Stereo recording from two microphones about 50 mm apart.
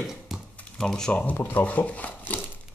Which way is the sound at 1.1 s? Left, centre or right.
Left.